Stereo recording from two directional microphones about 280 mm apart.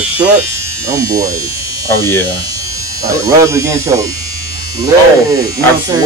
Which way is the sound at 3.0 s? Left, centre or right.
Centre.